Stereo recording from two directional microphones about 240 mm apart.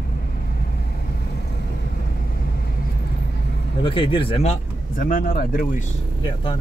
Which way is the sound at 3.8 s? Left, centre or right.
Left.